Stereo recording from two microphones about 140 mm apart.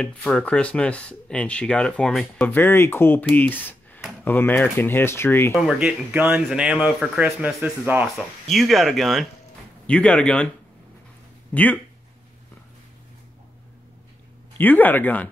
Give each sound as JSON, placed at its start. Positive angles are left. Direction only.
{"t": 0.0, "sound": "speech", "side_deg": 5}
{"t": 5.6, "sound": "speech", "side_deg": -5}
{"t": 8.5, "sound": "speech", "side_deg": 0}
{"t": 11.5, "sound": "speech", "side_deg": 10}
{"t": 14.6, "sound": "speech", "side_deg": 15}